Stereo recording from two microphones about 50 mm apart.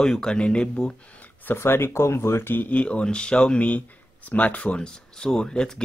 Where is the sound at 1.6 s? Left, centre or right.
Left.